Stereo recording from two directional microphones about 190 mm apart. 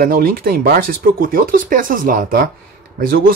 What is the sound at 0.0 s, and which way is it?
Speech, 50° right (ahead or behind).